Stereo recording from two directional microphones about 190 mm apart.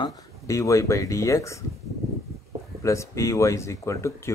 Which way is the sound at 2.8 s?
15° left (ahead or behind).